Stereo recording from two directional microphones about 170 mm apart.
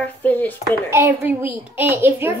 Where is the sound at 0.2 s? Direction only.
10° left (ahead or behind).